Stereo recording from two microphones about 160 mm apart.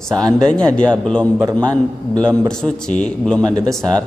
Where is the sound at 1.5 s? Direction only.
25° right (ahead or behind).